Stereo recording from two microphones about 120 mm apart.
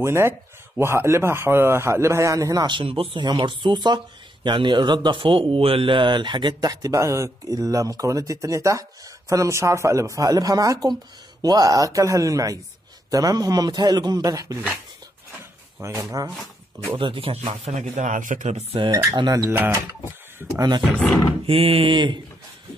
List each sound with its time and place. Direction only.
0.0 s a man's voice: 20° right (ahead or behind); by 3.3 s 50° right (ahead or behind)
3.3 s a man's voice: 40° right (ahead or behind)
15.8 s a man's voice: 25° right (ahead or behind)
16.9 s a sound: 45° right (ahead or behind)
17.5 s speech: 65° right (ahead or behind); by 18.6 s 90° right
18.7 s speech: 40° right (ahead or behind)
19.4 s speech: 15° right (ahead or behind)
21.5 s a sound: 50° right (ahead or behind)